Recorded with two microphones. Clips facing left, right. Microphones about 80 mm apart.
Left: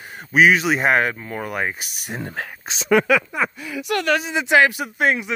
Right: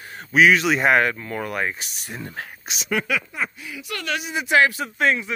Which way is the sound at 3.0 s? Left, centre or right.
Left.